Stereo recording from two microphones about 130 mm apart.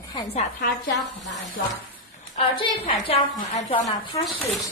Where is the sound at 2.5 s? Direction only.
45° left (ahead or behind).